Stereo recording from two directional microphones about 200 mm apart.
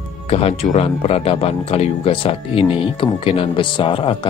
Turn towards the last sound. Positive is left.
turn(degrees=25)  # may be behind; listen again after turning